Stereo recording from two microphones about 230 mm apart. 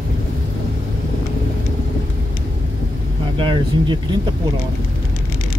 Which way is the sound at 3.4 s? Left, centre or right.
Right.